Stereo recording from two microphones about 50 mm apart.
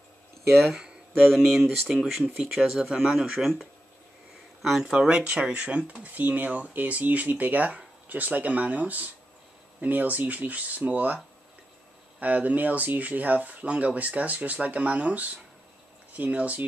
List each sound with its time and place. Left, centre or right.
1.5 s speech: centre
4.9 s speech: right
12.2 s speech: right